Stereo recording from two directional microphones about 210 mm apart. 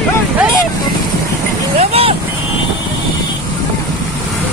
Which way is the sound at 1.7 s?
30° right (ahead or behind).